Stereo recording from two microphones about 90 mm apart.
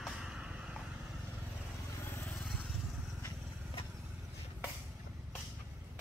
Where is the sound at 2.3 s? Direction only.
5° left (ahead or behind).